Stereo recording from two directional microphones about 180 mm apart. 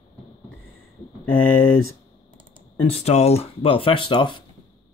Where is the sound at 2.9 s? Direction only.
35° left (ahead or behind).